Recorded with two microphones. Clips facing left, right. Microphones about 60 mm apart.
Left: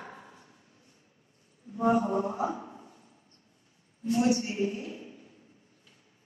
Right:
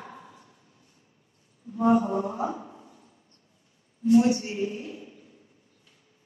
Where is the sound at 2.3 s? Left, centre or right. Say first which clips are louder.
Right 1 dB; left.